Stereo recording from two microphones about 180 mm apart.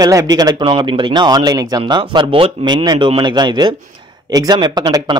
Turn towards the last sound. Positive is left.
turn(degrees=-25)  # may be behind; listen again after turning